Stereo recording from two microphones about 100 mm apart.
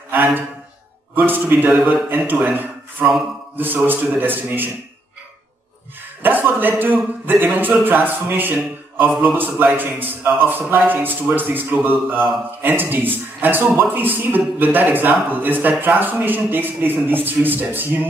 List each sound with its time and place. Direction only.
0.1 s a sound: 20° right (ahead or behind)
1.1 s a man's voice: 20° right (ahead or behind)
6.2 s a man's voice: 20° right (ahead or behind)